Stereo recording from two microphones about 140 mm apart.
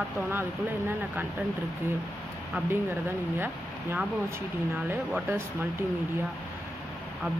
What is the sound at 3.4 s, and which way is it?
Speech, 15° right (ahead or behind).